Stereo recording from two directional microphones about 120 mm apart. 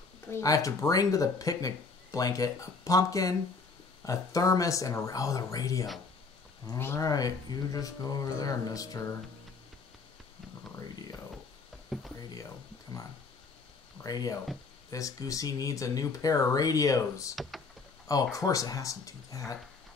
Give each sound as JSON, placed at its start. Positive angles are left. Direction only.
{"t": 0.3, "sound": "speech", "side_deg": 30}
{"t": 11.9, "sound": "a sound", "side_deg": 0}
{"t": 14.0, "sound": "speech", "side_deg": 30}